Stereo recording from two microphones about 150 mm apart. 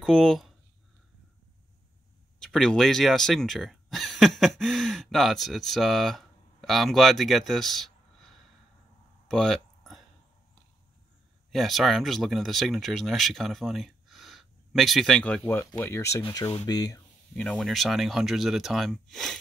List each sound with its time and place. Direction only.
0.0 s speech: 5° left (ahead or behind)
2.4 s speech: 5° left (ahead or behind)
9.3 s a sound: centre (ahead or behind)
11.5 s speech: centre (ahead or behind); by 17.0 s 25° left (ahead or behind)
17.4 s speech: centre (ahead or behind)